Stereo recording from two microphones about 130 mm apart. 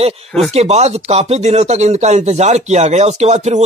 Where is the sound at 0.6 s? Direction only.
55° right (ahead or behind).